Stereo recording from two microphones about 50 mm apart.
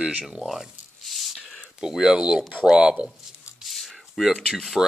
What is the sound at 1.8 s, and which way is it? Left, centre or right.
Speech, centre.